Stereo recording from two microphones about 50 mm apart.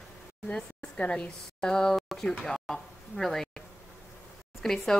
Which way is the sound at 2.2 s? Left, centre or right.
Centre.